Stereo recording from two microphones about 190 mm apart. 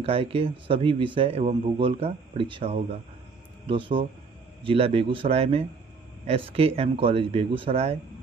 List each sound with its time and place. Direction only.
0.0 s a man's voice: 30° right (ahead or behind)